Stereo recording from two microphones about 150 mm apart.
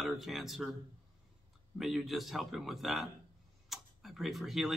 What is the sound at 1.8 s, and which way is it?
Speech, centre (ahead or behind).